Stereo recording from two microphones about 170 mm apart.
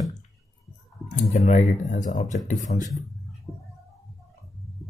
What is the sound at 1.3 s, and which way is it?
Speech, 45° left (ahead or behind).